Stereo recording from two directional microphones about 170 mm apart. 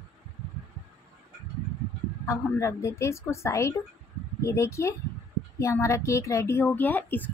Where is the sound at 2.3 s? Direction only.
15° left (ahead or behind).